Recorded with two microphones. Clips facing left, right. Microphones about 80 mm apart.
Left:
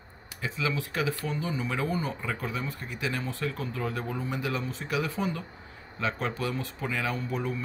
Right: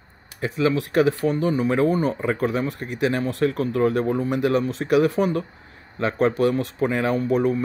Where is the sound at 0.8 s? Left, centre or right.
Right.